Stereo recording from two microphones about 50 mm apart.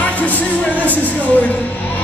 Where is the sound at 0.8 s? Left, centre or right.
Left.